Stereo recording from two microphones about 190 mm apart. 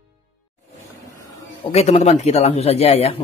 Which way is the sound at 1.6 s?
35° left (ahead or behind).